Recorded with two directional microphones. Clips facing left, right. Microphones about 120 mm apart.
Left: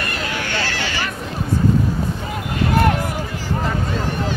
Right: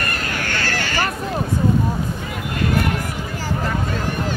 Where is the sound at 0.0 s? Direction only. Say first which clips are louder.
Even; 50° right (ahead or behind).